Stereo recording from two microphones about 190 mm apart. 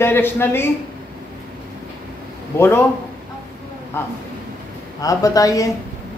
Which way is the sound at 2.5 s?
10° left (ahead or behind).